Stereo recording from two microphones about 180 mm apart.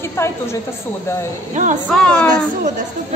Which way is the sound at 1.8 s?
5° left (ahead or behind).